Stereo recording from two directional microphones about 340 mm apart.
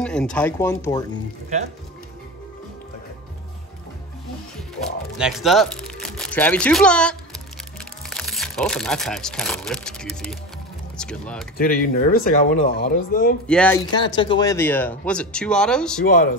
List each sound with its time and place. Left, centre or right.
0.0 s speech: centre
4.8 s music: left
5.1 s speech: centre
11.5 s speech: left
13.5 s speech: centre
16.0 s speech: left